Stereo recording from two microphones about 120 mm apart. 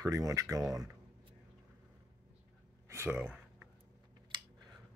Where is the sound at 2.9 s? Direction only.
20° right (ahead or behind).